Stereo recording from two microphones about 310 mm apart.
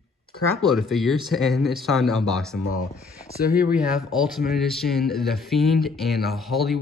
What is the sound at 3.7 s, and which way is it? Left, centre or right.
Speech, centre.